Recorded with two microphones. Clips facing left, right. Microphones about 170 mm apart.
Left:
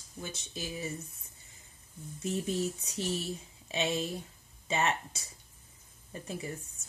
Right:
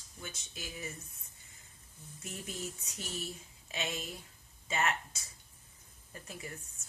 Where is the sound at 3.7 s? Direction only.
25° left (ahead or behind).